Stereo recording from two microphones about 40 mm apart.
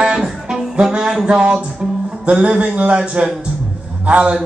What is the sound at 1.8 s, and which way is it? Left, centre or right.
Music, centre.